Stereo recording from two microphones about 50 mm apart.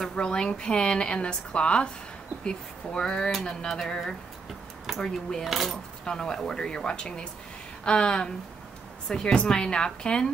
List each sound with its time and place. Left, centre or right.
0.1 s a woman's voice: centre
5.4 s speech: centre
6.0 s a woman's voice: centre